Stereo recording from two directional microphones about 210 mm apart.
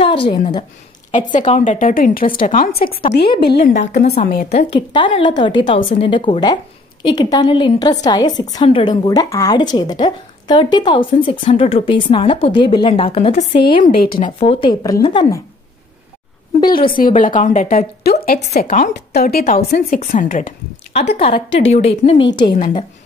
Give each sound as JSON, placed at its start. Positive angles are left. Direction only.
{"t": 0.0, "sound": "a woman's voice", "side_deg": 25}
{"t": 1.3, "sound": "a woman's voice", "side_deg": 35}
{"t": 2.2, "sound": "a woman's voice", "side_deg": 25}
{"t": 2.5, "sound": "a woman's voice", "side_deg": 45}
{"t": 4.5, "sound": "a woman's voice", "side_deg": 30}
{"t": 14.0, "sound": "a woman's voice", "side_deg": 45}
{"t": 14.4, "sound": "a woman's voice", "side_deg": 25}
{"t": 16.7, "sound": "a woman's voice", "side_deg": 45}